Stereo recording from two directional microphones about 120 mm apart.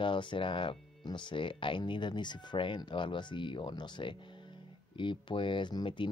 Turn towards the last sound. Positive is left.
turn(degrees=40)  # may be behind; listen again after turning